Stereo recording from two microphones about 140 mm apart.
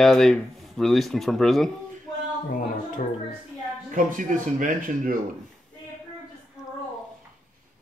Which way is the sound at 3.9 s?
70° right (ahead or behind).